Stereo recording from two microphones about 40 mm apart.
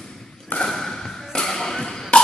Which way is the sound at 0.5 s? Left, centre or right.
Centre.